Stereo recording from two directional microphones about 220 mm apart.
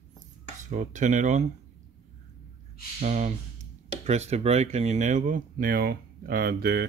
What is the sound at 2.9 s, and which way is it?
Speech, 35° right (ahead or behind).